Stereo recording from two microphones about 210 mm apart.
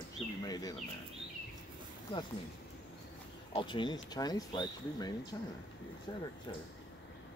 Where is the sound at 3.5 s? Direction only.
20° left (ahead or behind).